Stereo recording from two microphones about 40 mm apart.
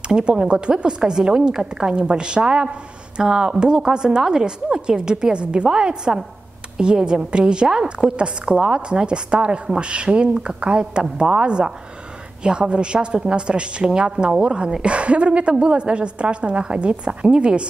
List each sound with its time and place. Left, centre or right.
0.1 s a woman's voice: centre